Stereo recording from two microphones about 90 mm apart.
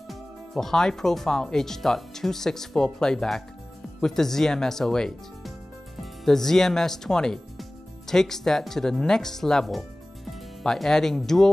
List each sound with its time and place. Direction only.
0.1 s speech: 5° left (ahead or behind)